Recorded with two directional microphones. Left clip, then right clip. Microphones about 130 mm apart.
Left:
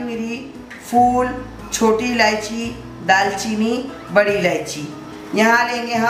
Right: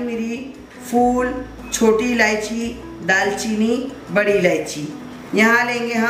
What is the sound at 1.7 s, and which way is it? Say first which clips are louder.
A woman's voice: right 1 dB; centre (ahead or behind).